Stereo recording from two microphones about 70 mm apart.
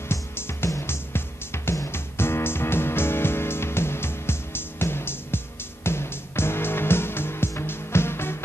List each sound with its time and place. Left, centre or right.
0.1 s music: left